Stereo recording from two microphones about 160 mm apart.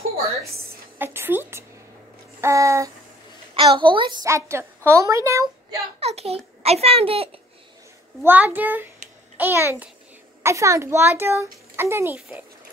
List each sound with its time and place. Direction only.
0.9 s a child's voice: 15° right (ahead or behind)
3.5 s a child's voice: 30° right (ahead or behind)
4.3 s a woman's voice: 15° right (ahead or behind)
5.9 s a child's voice: 40° right (ahead or behind)
8.2 s a child's voice: 10° right (ahead or behind)